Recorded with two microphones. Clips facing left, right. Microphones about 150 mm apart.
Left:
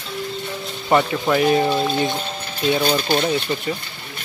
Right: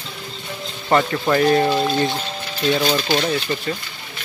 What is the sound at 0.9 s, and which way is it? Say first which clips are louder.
Speech: even; 5° left (ahead or behind).